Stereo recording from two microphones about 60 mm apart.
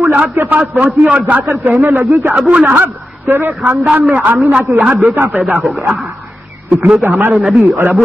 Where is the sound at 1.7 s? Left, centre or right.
Right.